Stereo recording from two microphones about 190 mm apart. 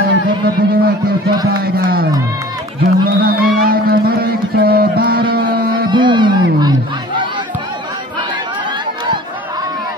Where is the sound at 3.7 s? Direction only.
55° right (ahead or behind).